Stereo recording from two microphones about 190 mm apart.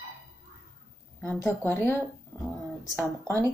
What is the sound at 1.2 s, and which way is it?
Speech, 10° left (ahead or behind).